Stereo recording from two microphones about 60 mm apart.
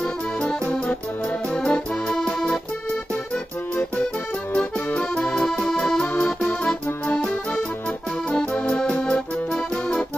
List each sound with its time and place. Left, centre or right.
0.4 s music: centre
4.6 s accordion: centre
6.2 s music: centre
7.1 s music: left
8.3 s accordion: centre